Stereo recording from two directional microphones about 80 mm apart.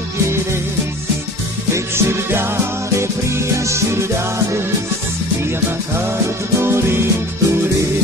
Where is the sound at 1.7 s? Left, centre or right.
Right.